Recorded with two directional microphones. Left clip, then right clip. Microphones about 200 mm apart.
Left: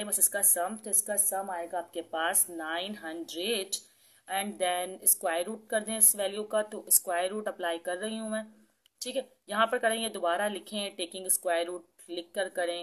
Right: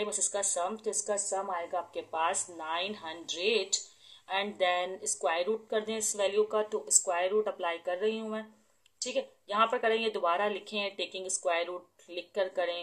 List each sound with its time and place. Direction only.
0.0 s speech: 30° left (ahead or behind)